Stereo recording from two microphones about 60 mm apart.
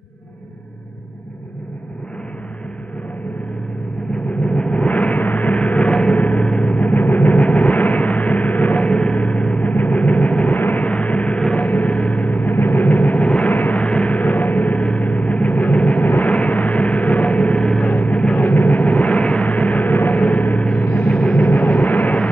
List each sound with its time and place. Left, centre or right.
4.3 s vehicle: centre
10.6 s gong: left
17.9 s vehicle: left